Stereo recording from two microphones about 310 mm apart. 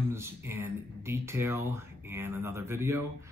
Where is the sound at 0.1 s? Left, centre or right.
Centre.